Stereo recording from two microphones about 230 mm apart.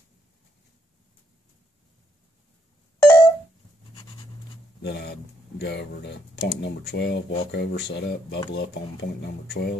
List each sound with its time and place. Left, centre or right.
3.0 s telephone dialing: centre
4.8 s speech: left